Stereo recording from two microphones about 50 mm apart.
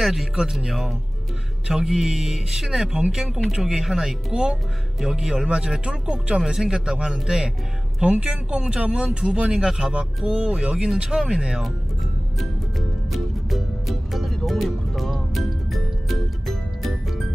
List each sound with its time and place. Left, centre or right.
0.0 s speech: centre
0.4 s speech: centre
12.4 s music: centre